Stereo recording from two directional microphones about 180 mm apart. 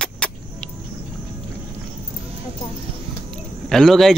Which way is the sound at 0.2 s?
5° left (ahead or behind).